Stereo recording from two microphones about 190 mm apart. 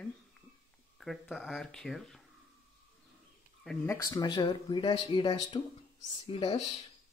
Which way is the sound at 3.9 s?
20° left (ahead or behind).